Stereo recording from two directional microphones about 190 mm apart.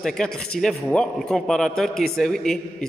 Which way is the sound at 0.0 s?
5° left (ahead or behind).